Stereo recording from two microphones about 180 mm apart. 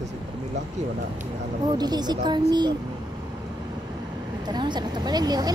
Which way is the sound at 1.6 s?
25° right (ahead or behind).